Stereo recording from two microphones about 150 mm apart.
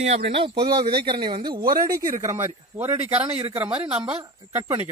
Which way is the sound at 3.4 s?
35° right (ahead or behind).